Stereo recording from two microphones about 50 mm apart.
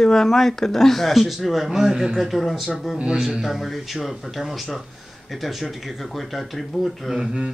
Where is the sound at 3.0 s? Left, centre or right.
Centre.